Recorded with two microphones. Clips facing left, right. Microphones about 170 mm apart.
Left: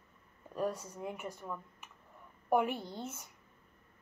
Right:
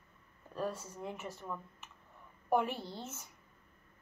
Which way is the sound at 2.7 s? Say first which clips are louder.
Left 1 dB; 15° left (ahead or behind).